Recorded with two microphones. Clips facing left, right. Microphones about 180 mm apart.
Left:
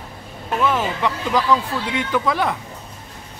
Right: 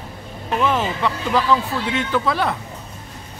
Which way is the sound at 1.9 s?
15° left (ahead or behind).